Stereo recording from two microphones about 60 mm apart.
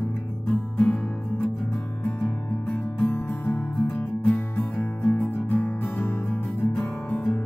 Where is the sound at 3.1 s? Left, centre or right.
Left.